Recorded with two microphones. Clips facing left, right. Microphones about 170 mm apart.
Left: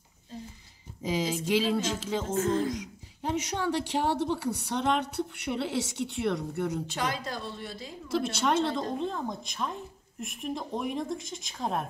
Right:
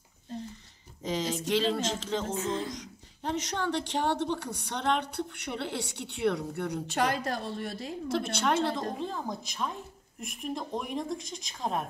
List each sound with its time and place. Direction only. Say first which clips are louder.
1.0 s a sound: left 2 dB; 5° left (ahead or behind)
2.7 s speech: left 5 dB; 5° left (ahead or behind)
7.0 s a woman's voice: right 8 dB; 60° right (ahead or behind)
8.1 s speech: left 2 dB; centre (ahead or behind)